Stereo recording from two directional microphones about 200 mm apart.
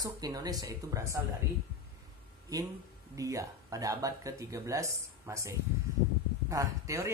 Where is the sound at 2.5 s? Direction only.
15° right (ahead or behind).